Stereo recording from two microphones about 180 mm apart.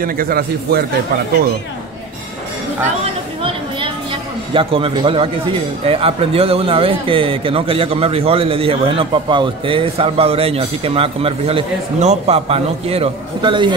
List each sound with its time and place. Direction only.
0.0 s a man's voice: 55° right (ahead or behind)
4.6 s a man's voice: 30° right (ahead or behind)